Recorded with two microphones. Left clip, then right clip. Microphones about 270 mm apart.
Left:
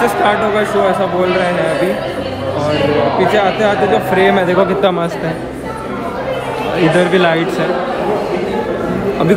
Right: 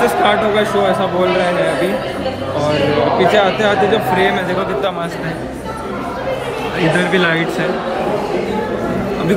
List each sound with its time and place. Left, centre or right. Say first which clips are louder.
0.2 s a man's voice: even; centre
3.2 s speech: even; centre
4.2 s a man's voice: left 4 dB; left
7.0 s a man's voice: left 3 dB; centre